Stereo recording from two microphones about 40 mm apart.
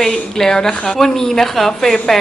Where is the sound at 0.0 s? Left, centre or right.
Centre.